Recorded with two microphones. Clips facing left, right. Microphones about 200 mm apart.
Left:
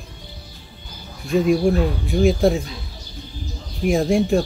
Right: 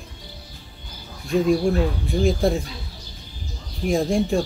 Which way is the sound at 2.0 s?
Centre (ahead or behind).